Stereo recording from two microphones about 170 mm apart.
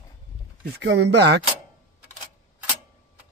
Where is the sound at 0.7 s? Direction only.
90° right.